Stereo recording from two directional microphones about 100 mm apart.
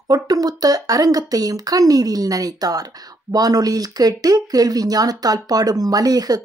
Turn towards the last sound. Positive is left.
turn(degrees=-40)  # may be behind; listen again after turning